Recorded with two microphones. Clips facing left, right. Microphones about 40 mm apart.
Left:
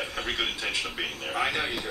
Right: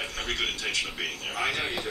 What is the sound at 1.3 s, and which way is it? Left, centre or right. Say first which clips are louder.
Speech: left 2 dB; centre.